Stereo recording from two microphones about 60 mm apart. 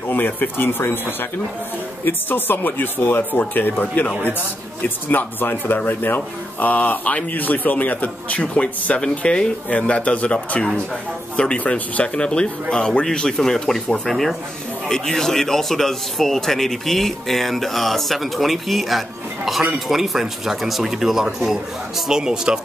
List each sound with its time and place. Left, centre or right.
0.1 s speech: left
2.0 s a man's voice: left; by 22.6 s centre